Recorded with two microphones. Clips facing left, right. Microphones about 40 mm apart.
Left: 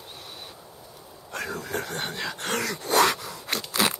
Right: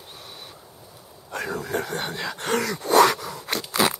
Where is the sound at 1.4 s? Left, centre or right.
Right.